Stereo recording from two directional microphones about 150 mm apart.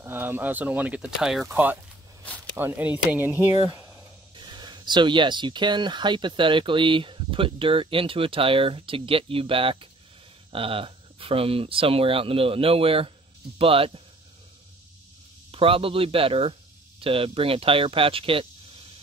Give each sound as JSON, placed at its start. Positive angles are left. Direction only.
{"t": 0.0, "sound": "speech", "side_deg": -15}
{"t": 4.4, "sound": "speech", "side_deg": -30}
{"t": 15.5, "sound": "speech", "side_deg": -40}